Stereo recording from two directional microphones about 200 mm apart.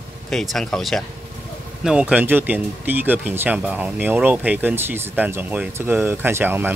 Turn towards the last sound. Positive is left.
turn(degrees=-10)  # may be behind; listen again after turning